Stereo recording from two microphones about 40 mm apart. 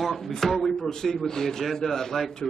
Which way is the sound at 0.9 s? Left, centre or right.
Centre.